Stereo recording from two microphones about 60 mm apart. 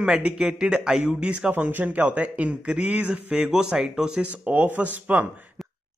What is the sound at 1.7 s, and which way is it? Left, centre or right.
A man's voice, right.